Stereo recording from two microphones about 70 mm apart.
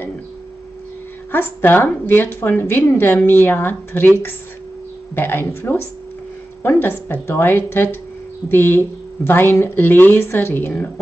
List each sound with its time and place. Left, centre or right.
1.3 s speech: left
5.1 s speech: left